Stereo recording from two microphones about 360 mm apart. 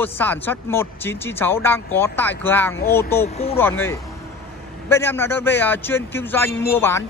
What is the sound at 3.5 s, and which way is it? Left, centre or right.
Speech, centre.